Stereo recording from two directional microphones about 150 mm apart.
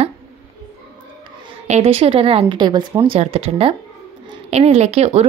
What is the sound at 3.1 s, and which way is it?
A woman's voice, 40° right (ahead or behind).